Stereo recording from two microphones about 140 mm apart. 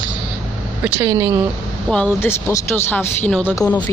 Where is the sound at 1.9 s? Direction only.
5° left (ahead or behind).